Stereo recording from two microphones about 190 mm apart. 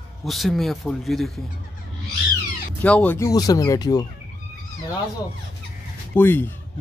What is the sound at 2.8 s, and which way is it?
Speech, 5° left (ahead or behind).